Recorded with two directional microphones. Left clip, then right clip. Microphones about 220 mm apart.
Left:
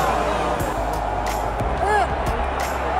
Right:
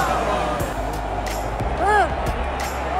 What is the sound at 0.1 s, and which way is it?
Music, centre (ahead or behind).